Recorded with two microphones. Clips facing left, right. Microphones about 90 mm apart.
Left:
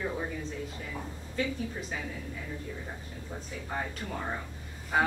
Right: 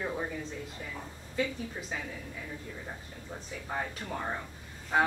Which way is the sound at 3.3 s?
Centre (ahead or behind).